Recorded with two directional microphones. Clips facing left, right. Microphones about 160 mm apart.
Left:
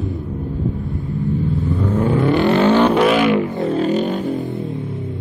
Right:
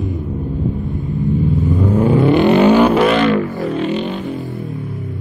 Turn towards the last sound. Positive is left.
turn(degrees=40)  # may be behind; listen again after turning